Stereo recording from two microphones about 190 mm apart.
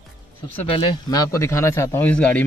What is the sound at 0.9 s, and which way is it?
Speech, 20° left (ahead or behind).